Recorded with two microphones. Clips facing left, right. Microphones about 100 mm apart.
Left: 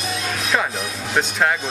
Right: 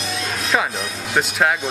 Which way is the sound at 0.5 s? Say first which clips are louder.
Right 2 dB; 5° right (ahead or behind).